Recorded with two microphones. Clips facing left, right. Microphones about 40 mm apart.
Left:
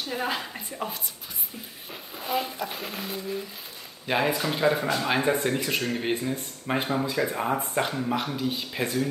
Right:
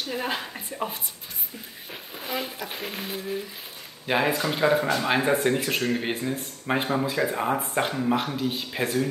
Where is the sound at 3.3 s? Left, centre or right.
Centre.